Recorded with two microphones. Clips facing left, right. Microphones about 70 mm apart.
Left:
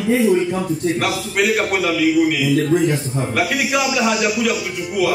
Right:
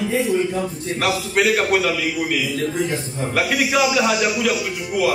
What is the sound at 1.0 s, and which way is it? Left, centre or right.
Speech, centre.